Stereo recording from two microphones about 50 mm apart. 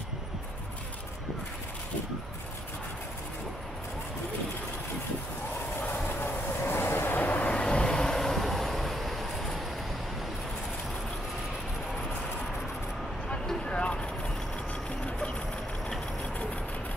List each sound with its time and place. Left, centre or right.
5.8 s train: left; by 9.6 s centre
13.7 s vehicle: left